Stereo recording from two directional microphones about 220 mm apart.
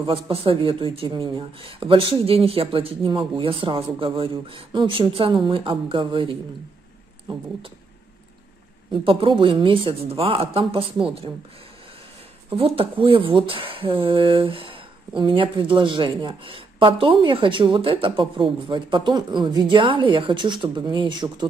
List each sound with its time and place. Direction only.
0.0 s speech: 25° right (ahead or behind)
8.9 s speech: 25° right (ahead or behind)
12.4 s speech: 25° right (ahead or behind)